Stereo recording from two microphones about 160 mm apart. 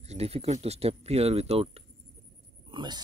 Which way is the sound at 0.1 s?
40° right (ahead or behind).